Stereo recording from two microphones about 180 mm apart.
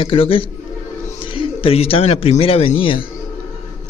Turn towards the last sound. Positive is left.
turn(degrees=30)  # may be behind; listen again after turning